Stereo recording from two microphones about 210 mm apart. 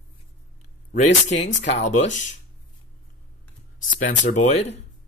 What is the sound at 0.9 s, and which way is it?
Speech, 35° left (ahead or behind).